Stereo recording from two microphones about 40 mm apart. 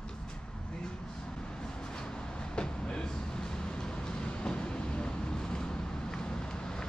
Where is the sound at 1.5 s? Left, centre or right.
Centre.